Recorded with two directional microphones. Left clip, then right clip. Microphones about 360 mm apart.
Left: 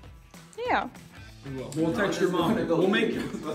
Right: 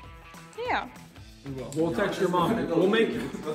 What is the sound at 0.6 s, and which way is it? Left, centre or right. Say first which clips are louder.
Music: left 2 dB; centre.